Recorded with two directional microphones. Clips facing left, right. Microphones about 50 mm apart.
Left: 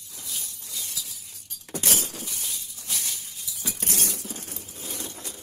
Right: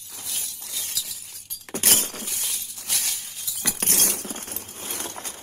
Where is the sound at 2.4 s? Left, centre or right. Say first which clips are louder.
Right 2 dB; right.